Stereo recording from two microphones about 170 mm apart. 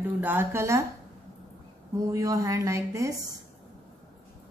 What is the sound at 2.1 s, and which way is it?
Speech, 20° right (ahead or behind).